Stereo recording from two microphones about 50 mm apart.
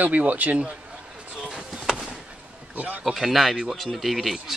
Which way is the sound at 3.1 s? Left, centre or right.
Centre.